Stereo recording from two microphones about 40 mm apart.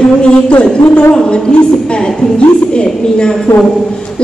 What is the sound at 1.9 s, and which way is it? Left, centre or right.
A woman's voice, left.